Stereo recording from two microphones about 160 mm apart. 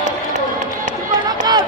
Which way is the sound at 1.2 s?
25° right (ahead or behind).